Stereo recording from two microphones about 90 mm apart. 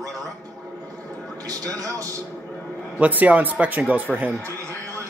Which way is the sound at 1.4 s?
40° right (ahead or behind).